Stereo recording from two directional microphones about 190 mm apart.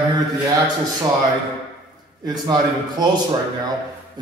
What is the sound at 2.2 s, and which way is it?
Speech, 20° right (ahead or behind).